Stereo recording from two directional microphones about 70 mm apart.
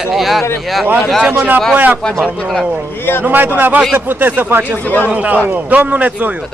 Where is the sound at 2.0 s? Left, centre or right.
Centre.